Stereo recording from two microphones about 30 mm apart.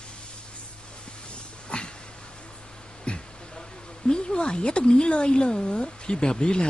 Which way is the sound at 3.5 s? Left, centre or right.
Left.